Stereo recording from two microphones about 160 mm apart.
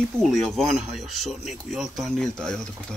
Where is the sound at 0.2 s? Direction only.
Centre (ahead or behind).